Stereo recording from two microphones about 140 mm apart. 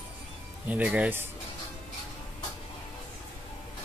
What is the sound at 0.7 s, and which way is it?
Speech, 10° right (ahead or behind).